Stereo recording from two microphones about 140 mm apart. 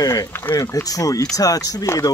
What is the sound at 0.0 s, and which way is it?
Speech, 25° left (ahead or behind).